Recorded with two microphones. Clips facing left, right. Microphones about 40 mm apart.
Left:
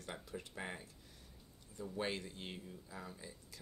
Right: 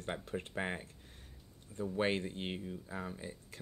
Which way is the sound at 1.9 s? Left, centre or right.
Right.